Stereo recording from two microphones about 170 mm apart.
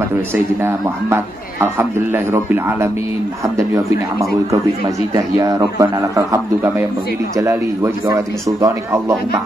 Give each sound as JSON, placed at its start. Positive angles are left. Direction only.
{"t": 0.3, "sound": "a man's voice", "side_deg": -15}